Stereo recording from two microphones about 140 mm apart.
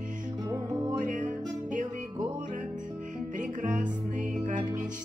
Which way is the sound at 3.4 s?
65° right (ahead or behind).